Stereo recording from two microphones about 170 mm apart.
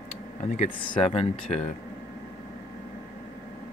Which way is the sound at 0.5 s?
50° left (ahead or behind).